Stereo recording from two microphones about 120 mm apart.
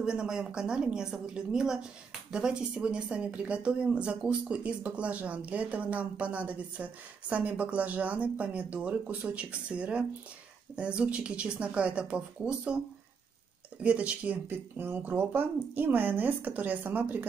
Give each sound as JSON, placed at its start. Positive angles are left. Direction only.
{"t": 0.0, "sound": "speech", "side_deg": -5}
{"t": 13.8, "sound": "speech", "side_deg": -10}